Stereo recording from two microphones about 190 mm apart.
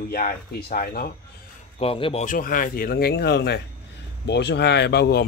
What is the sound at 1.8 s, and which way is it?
Speech, 30° left (ahead or behind).